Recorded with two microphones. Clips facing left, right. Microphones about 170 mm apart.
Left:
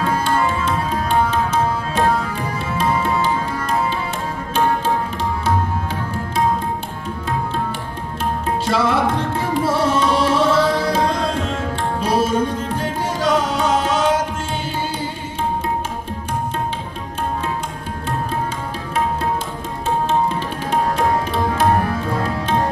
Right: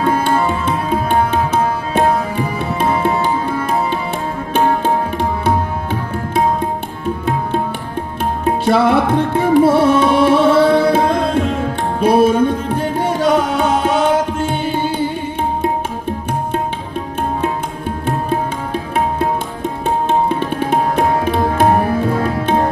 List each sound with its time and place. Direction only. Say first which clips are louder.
0.0 s tabla: right 4 dB; 60° right (ahead or behind)
2.8 s music: right 3 dB; 55° right (ahead or behind)
5.4 s music: right 3 dB; 60° right (ahead or behind)
8.5 s music: right 7 dB; 60° right (ahead or behind)
20.1 s tabla: right 4 dB; 60° right (ahead or behind)